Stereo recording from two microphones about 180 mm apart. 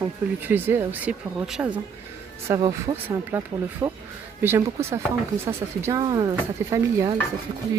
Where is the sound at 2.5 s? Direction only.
15° right (ahead or behind).